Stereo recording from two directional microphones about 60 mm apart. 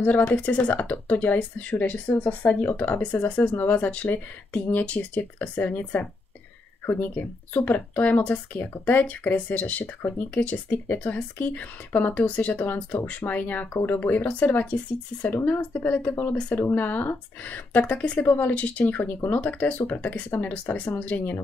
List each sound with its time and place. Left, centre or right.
0.0 s speech: left
5.6 s speech: left
7.5 s speech: left